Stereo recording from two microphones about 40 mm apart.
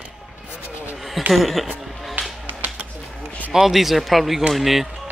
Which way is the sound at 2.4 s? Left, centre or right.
Right.